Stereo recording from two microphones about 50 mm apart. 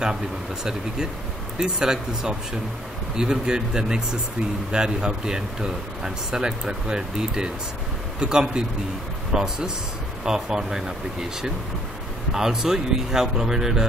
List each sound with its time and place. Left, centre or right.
1.6 s speech: centre